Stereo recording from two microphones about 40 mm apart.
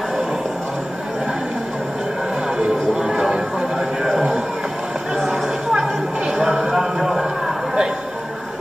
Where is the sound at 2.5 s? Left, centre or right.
Centre.